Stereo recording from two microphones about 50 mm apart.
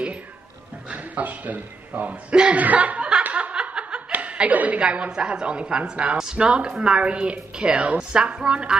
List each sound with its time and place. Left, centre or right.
0.8 s speech: right
2.3 s a woman's voice: centre
2.6 s a woman's voice: right
3.3 s snicker: right
4.1 s chuckle: right
4.8 s a woman's voice: right